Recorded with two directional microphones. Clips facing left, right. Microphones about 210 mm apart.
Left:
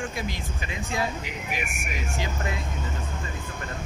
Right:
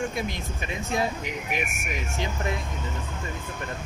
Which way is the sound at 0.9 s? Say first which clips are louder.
Right 2 dB; 20° right (ahead or behind).